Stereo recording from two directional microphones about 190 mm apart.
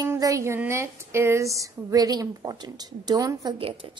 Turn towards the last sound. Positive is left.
turn(degrees=-30)  # may be behind; listen again after turning